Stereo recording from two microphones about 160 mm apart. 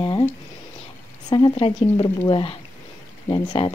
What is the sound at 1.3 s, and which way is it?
A woman's voice, 30° left (ahead or behind).